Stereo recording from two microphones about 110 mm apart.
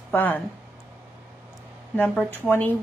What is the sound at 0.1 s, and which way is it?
Speech, 20° left (ahead or behind).